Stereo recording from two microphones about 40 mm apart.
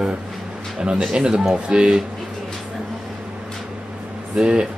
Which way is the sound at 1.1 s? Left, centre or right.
Right.